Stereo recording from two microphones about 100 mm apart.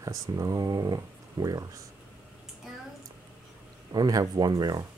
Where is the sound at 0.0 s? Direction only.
35° right (ahead or behind).